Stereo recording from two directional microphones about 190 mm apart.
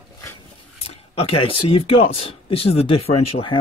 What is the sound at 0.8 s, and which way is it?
Speech, 30° left (ahead or behind).